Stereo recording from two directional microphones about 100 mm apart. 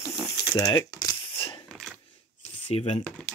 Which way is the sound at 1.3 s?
65° left (ahead or behind).